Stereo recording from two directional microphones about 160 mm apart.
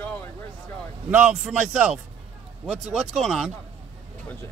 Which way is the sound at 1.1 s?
5° right (ahead or behind).